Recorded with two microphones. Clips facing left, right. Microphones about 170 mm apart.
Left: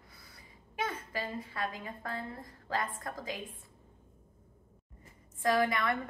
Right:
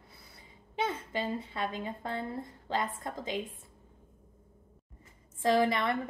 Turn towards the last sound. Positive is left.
turn(degrees=-25)  # may be behind; listen again after turning